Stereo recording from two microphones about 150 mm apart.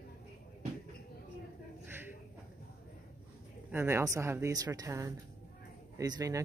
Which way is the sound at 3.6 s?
15° right (ahead or behind).